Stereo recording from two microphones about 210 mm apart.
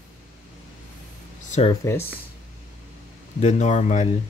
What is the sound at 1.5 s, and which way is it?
Speech, 30° left (ahead or behind).